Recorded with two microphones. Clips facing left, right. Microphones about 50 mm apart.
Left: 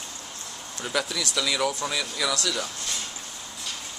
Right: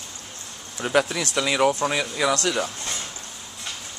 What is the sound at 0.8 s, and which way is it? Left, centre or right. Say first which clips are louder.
Speech: right 7 dB; right.